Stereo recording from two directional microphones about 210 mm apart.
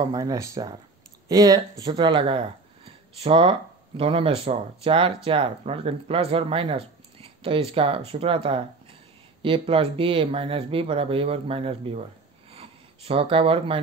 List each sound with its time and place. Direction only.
0.0 s speech: 15° right (ahead or behind)
12.5 s gasp: 25° right (ahead or behind)